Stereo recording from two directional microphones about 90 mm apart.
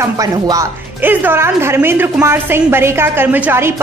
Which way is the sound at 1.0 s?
20° right (ahead or behind).